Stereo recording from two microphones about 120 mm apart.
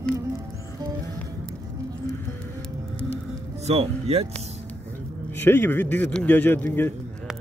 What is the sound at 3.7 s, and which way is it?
Speech, 55° right (ahead or behind).